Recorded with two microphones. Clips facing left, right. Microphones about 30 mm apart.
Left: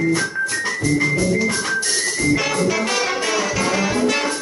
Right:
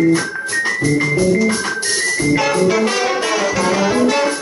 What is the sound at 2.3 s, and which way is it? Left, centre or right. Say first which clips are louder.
Music: right 6 dB; centre.